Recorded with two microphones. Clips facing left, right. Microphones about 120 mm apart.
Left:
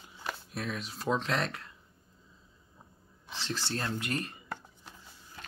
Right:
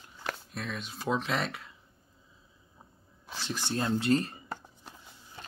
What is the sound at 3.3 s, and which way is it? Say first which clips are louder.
Speech: right 1 dB; 10° right (ahead or behind).